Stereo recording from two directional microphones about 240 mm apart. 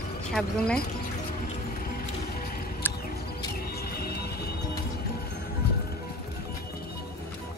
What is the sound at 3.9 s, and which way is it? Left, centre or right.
Music, left.